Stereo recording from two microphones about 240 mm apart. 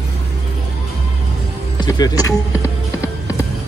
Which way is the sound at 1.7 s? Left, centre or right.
Centre.